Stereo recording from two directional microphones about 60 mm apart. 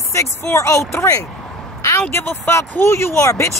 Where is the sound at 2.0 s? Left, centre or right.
Left.